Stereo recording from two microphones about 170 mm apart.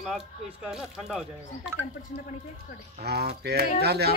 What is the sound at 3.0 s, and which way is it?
Speech, 70° right (ahead or behind).